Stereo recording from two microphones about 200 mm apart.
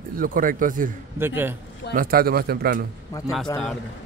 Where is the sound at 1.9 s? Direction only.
45° right (ahead or behind).